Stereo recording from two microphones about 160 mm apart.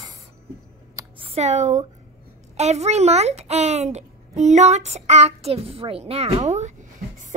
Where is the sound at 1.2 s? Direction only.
40° right (ahead or behind).